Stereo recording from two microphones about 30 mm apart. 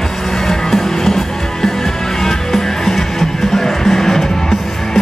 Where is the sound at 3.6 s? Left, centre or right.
Centre.